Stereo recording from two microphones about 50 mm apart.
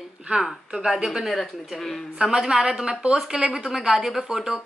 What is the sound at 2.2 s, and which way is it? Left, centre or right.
A woman's voice, centre.